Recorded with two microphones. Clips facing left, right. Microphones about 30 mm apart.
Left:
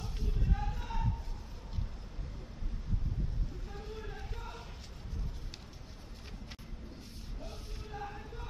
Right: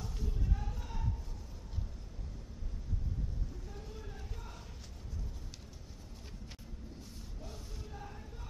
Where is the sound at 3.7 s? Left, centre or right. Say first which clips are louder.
Left 4 dB; left.